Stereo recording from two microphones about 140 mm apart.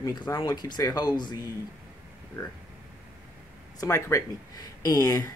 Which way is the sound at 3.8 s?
20° left (ahead or behind).